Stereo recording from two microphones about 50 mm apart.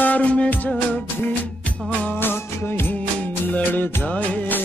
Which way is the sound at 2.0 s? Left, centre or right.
Left.